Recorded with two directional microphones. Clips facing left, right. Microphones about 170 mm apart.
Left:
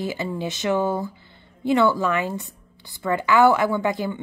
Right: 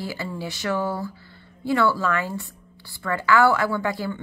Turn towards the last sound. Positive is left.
turn(degrees=20)  # may be behind; listen again after turning